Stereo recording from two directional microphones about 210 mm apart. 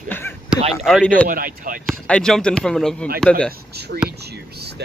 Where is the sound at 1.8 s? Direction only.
5° left (ahead or behind).